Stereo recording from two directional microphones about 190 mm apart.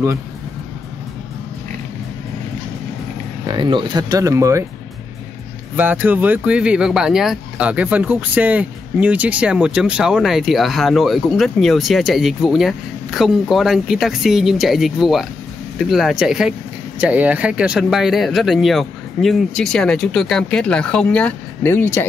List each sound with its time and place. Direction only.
3.4 s speech: 25° right (ahead or behind)
5.8 s speech: 10° right (ahead or behind); by 22.0 s 10° left (ahead or behind)